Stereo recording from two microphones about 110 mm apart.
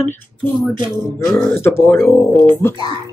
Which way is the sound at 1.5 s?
20° left (ahead or behind).